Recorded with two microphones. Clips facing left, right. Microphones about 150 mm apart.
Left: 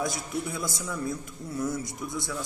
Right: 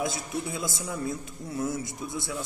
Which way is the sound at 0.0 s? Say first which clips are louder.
Even; 25° right (ahead or behind).